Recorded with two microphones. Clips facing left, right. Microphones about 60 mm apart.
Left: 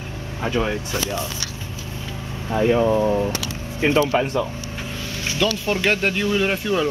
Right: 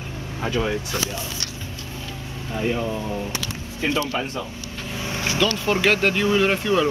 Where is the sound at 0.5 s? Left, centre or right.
Centre.